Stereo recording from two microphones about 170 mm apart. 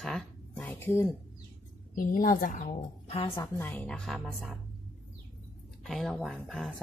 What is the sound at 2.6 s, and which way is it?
Speech, 35° left (ahead or behind).